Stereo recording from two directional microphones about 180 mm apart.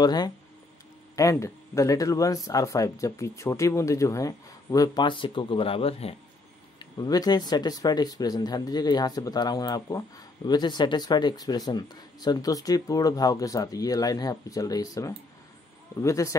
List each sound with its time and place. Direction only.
0.0 s speech: 20° left (ahead or behind)
6.8 s speech: 20° left (ahead or behind)